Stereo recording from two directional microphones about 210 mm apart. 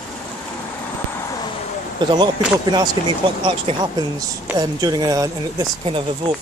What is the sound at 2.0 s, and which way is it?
Speech, 20° right (ahead or behind).